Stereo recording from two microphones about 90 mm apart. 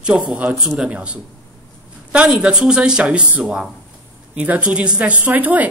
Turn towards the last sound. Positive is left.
turn(degrees=-20)  # may be behind; listen again after turning